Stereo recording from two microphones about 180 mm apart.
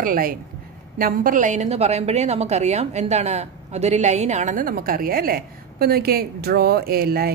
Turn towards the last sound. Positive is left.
turn(degrees=-60)  # may be behind; listen again after turning